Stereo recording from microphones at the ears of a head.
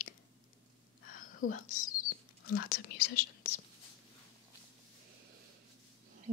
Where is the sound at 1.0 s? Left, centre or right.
Left.